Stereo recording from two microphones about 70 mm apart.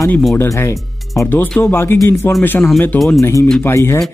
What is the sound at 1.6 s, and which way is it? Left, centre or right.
Speech, left.